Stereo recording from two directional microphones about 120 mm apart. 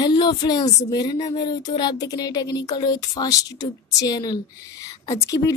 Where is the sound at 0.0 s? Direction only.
40° left (ahead or behind).